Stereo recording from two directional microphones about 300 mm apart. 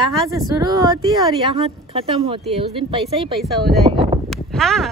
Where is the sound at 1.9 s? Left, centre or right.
Centre.